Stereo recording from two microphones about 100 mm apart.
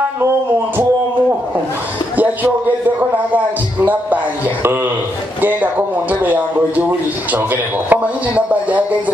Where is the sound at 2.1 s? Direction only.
15° right (ahead or behind).